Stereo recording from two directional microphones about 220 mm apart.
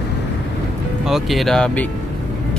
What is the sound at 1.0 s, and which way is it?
Speech, centre (ahead or behind).